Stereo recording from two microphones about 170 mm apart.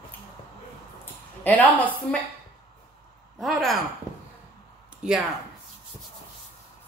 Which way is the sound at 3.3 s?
Centre (ahead or behind).